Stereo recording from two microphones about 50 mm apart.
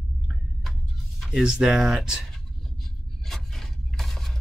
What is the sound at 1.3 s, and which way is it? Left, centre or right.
Speech, centre.